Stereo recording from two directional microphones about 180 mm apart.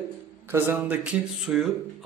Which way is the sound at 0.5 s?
10° right (ahead or behind).